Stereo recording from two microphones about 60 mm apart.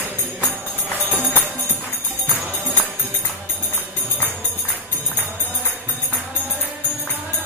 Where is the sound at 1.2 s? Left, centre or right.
Left.